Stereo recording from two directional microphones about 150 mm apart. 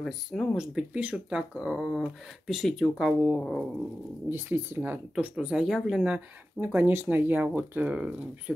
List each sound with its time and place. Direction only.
0.0 s speech: centre (ahead or behind)
4.3 s speech: 15° right (ahead or behind)